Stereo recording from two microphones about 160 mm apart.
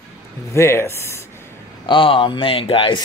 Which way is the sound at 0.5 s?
15° left (ahead or behind).